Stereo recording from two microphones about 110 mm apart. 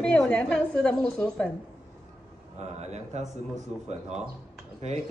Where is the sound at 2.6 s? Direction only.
90° right.